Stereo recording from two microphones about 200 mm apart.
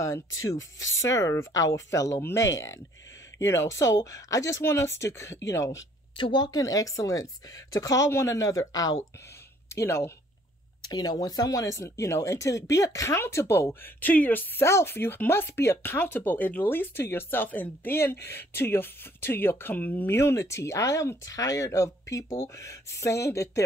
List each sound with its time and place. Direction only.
0.8 s speech: 70° left (ahead or behind)
1.1 s speech: 15° left (ahead or behind)